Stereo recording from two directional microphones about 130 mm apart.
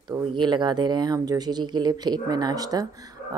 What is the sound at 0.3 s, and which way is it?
A woman's voice, 35° right (ahead or behind).